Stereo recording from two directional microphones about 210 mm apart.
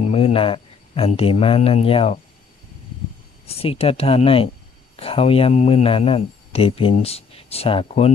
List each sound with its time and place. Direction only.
0.0 s speech: 30° left (ahead or behind)
3.4 s speech: 30° left (ahead or behind)